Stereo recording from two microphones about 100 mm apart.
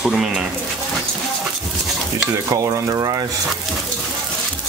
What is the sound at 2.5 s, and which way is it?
Speech, 35° right (ahead or behind).